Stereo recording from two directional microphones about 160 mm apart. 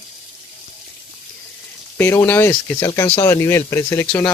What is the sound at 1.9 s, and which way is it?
Speech, 15° left (ahead or behind).